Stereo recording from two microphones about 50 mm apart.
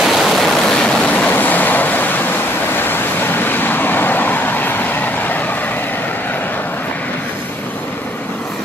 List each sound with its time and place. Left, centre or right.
0.0 s a sound: centre
1.0 s waves: left
2.8 s vehicle: left